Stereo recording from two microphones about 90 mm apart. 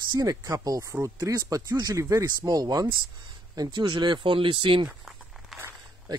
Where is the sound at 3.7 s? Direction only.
60° right (ahead or behind).